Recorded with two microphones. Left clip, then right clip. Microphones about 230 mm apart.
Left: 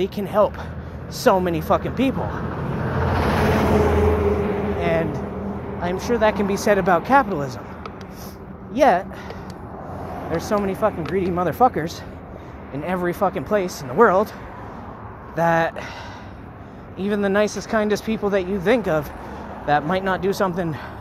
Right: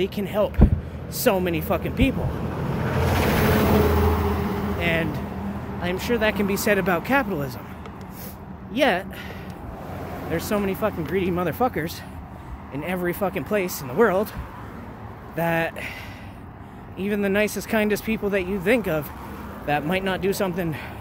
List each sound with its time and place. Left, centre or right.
0.0 s speech: centre
2.5 s vehicle: centre
4.0 s vehicle: right
4.7 s a sound: centre
5.8 s speech: centre
8.7 s speech: centre
10.3 s speech: centre
15.3 s speech: centre
17.0 s speech: centre
17.6 s speech: right
17.8 s speech: centre